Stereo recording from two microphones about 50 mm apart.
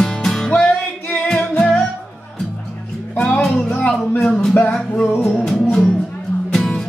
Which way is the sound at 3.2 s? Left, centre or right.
Left.